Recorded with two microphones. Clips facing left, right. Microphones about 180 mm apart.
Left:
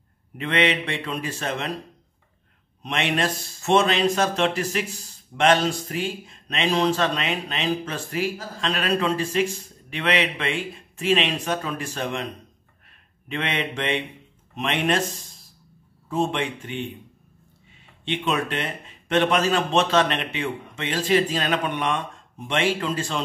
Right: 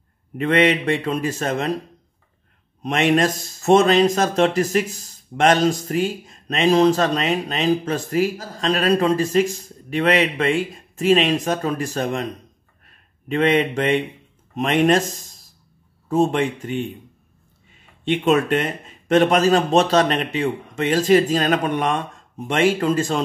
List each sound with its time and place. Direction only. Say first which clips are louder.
0.4 s a man's voice: right 6 dB; 45° right (ahead or behind)
2.8 s speech: right 7 dB; 45° right (ahead or behind)
13.3 s a man's voice: right 10 dB; 40° right (ahead or behind)
18.0 s a man's voice: right 7 dB; 45° right (ahead or behind)